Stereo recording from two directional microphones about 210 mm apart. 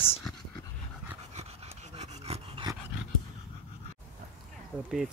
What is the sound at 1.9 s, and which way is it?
Dog, 30° right (ahead or behind).